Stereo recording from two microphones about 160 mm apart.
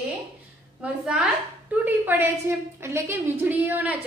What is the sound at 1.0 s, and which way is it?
A woman's voice, 5° right (ahead or behind).